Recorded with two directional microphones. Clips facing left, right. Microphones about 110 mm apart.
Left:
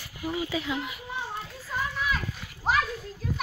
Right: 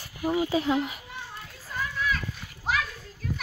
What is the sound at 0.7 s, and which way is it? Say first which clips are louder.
Speech: right 6 dB; 50° right (ahead or behind).